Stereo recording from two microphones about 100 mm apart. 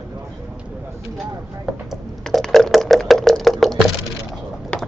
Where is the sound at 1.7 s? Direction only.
Centre (ahead or behind).